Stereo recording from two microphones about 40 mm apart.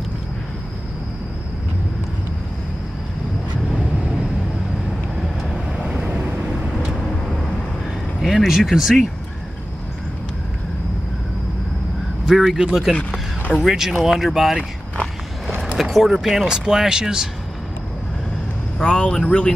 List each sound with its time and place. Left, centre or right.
8.2 s speech: centre
12.3 s speech: centre
15.8 s speech: centre
18.8 s speech: left